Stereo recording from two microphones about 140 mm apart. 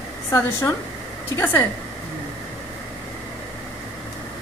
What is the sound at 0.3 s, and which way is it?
A woman's voice, 20° left (ahead or behind).